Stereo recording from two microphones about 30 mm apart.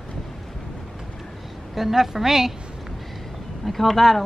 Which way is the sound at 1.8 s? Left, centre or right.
Centre.